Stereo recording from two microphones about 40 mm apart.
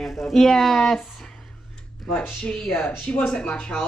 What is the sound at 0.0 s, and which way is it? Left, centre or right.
Speech, centre.